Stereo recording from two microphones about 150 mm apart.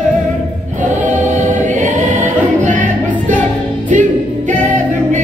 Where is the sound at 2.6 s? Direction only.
60° right (ahead or behind).